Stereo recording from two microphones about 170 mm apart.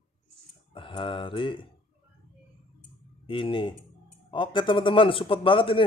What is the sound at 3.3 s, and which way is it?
A man's voice, 30° left (ahead or behind).